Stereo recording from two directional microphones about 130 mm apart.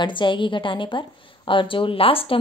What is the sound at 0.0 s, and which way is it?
A woman's voice, 40° left (ahead or behind).